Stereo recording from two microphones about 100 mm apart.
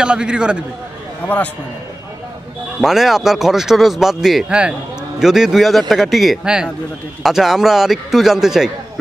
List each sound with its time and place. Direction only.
0.0 s a man's voice: 10° right (ahead or behind)
1.2 s a man's voice: 15° left (ahead or behind)
2.8 s speech: 5° right (ahead or behind)